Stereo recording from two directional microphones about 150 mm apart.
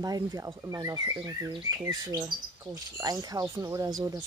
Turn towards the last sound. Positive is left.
turn(degrees=-25)  # may be behind; listen again after turning